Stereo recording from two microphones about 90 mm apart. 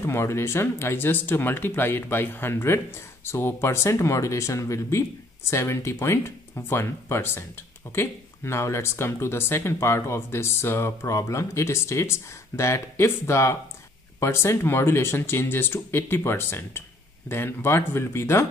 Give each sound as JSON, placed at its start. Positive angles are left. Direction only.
{"t": 0.0, "sound": "speech", "side_deg": 30}